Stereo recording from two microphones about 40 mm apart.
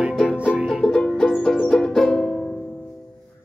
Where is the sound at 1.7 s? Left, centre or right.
Centre.